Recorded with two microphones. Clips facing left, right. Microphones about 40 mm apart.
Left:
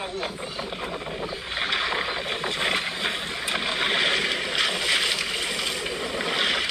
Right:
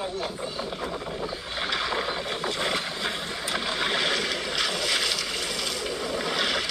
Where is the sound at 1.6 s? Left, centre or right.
Left.